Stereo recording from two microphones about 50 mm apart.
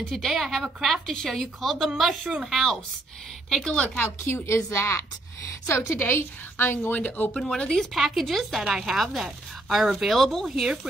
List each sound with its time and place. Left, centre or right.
0.1 s speech: centre
0.4 s speech: centre
1.0 s speech: centre
3.8 s speech: left
4.3 s a woman's voice: left
5.7 s a woman's voice: left
6.9 s speech: left
7.4 s speech: centre
7.9 s speech: centre
8.6 s speech: centre